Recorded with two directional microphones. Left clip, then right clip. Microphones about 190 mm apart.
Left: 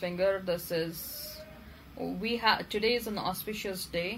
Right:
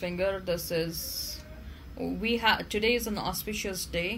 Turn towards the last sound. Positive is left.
turn(degrees=-40)  # may be behind; listen again after turning